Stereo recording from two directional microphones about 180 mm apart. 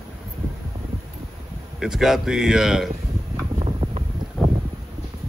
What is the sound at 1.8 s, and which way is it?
Speech, centre (ahead or behind).